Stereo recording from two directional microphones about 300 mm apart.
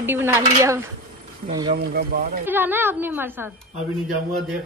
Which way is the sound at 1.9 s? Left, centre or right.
Right.